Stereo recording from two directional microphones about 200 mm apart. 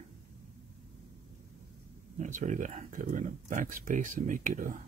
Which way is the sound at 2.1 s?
40° right (ahead or behind).